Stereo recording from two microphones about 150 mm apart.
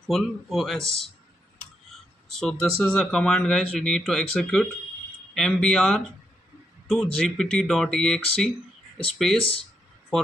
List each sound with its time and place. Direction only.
0.0 s speech: centre (ahead or behind)
2.3 s speech: 5° left (ahead or behind)
9.4 s speech: 40° left (ahead or behind)